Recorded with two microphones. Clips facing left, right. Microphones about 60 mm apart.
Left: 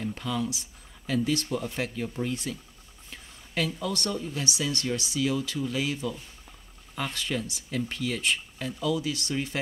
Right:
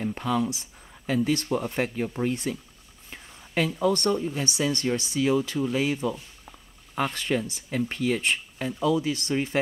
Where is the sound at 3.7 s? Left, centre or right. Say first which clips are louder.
Right 7 dB; right.